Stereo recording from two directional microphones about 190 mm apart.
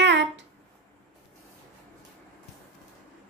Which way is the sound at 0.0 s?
70° right (ahead or behind).